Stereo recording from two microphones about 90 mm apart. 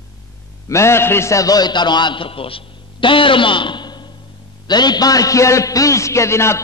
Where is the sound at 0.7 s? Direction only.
30° left (ahead or behind).